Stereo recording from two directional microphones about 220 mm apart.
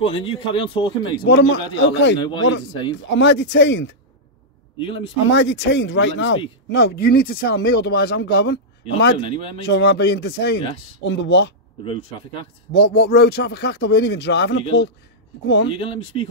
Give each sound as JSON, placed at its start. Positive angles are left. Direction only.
{"t": 0.0, "sound": "a man's voice", "side_deg": 25}
{"t": 1.2, "sound": "speech", "side_deg": 50}
{"t": 4.7, "sound": "a man's voice", "side_deg": 25}
{"t": 5.2, "sound": "speech", "side_deg": 60}
{"t": 6.7, "sound": "speech", "side_deg": 45}
{"t": 9.2, "sound": "a man's voice", "side_deg": 25}
{"t": 9.7, "sound": "speech", "side_deg": 50}
{"t": 11.8, "sound": "a man's voice", "side_deg": 25}
{"t": 12.7, "sound": "speech", "side_deg": 45}
{"t": 15.7, "sound": "a man's voice", "side_deg": 25}